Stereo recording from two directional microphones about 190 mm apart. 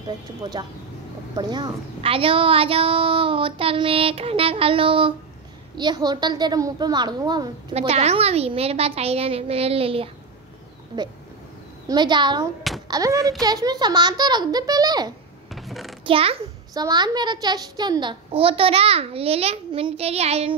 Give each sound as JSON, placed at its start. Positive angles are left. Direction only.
{"t": 1.3, "sound": "a child's voice", "side_deg": -20}
{"t": 11.9, "sound": "a child's voice", "side_deg": -25}
{"t": 15.5, "sound": "a sound", "side_deg": 0}
{"t": 16.1, "sound": "a child's voice", "side_deg": -30}